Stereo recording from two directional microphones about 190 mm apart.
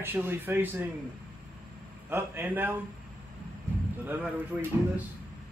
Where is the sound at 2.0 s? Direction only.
10° right (ahead or behind).